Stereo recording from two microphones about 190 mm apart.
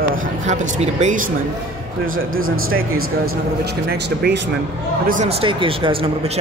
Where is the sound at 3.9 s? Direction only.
60° right (ahead or behind).